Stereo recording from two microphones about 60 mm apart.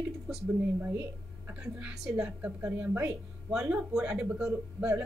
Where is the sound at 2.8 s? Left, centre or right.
Right.